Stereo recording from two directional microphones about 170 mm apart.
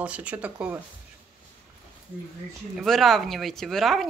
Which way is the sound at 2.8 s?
Centre (ahead or behind).